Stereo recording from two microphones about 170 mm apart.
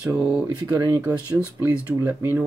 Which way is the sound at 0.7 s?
20° right (ahead or behind).